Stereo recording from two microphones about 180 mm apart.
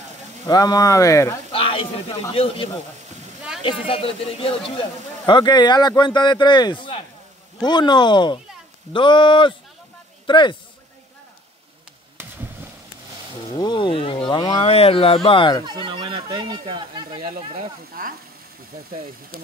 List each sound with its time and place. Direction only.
0.5 s speech: 20° left (ahead or behind)
1.5 s sizzle: 30° left (ahead or behind)
2.3 s speech: 30° left (ahead or behind)
3.8 s speech: 30° left (ahead or behind)
13.6 s speech: 25° left (ahead or behind)
15.6 s speech: 25° right (ahead or behind)
18.0 s frying: 50° right (ahead or behind)